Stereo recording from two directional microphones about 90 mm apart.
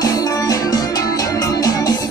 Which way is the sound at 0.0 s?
45° left (ahead or behind).